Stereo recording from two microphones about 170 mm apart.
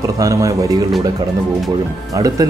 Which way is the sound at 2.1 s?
20° right (ahead or behind).